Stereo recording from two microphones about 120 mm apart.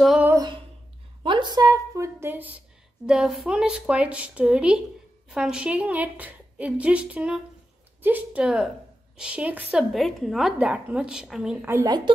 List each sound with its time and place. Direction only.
1.2 s a woman's voice: 40° right (ahead or behind); by 2.6 s 15° right (ahead or behind)
3.1 s a woman's voice: 5° right (ahead or behind)
9.9 s a woman's voice: centre (ahead or behind)
10.6 s a woman's voice: 10° right (ahead or behind)
11.8 s a woman's voice: 35° right (ahead or behind)